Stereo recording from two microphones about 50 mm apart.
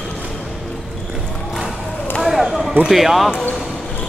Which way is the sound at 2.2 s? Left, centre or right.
Centre.